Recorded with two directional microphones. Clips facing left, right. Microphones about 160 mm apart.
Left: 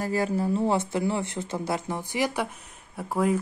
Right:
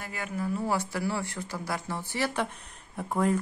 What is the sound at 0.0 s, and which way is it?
Speech, 35° left (ahead or behind).